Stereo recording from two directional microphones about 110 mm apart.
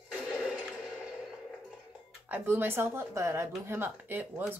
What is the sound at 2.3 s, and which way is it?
Speech, 20° right (ahead or behind).